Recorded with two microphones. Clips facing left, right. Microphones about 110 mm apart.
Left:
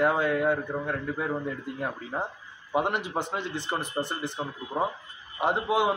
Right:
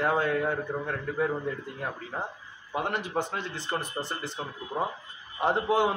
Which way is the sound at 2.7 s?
20° left (ahead or behind).